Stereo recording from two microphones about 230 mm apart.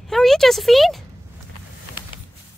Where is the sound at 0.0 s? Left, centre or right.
Centre.